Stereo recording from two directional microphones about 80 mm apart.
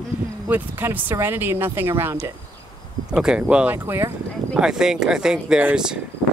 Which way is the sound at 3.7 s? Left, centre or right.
Right.